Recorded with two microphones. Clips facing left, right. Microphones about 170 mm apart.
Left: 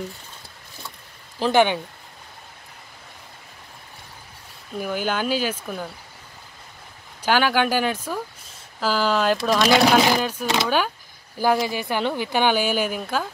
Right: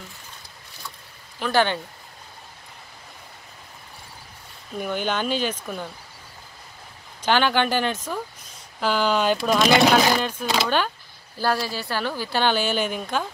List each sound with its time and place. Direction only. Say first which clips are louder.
1.4 s a woman's voice: left 3 dB; 20° left (ahead or behind)
4.7 s speech: left 1 dB; 5° left (ahead or behind)
7.2 s a woman's voice: left 1 dB; 5° left (ahead or behind)